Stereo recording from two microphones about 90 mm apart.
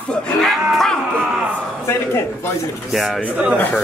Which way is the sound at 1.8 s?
30° left (ahead or behind).